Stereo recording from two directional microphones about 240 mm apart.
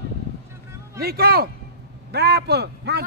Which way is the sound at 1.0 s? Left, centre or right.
Right.